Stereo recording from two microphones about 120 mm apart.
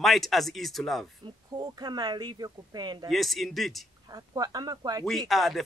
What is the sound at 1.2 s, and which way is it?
Speech, 35° right (ahead or behind).